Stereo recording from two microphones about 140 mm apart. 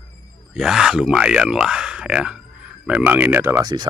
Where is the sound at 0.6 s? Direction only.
5° right (ahead or behind).